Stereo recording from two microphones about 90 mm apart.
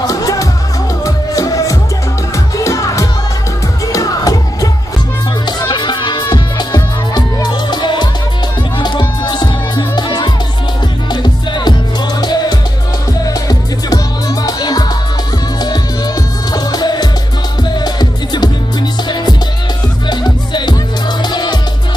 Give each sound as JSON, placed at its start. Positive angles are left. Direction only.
{"t": 0.0, "sound": "music", "side_deg": 40}
{"t": 5.7, "sound": "music", "side_deg": 60}
{"t": 16.5, "sound": "music", "side_deg": 50}
{"t": 20.1, "sound": "music", "side_deg": 55}